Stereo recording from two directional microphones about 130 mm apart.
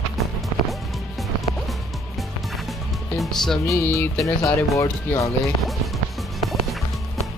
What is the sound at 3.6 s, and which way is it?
Speech, 20° left (ahead or behind).